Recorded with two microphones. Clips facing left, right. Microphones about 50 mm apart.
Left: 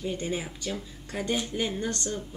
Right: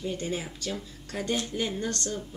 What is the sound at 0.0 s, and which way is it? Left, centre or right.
Speech, centre.